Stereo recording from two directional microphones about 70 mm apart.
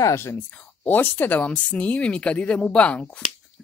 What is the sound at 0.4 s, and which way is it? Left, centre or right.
Speech, left.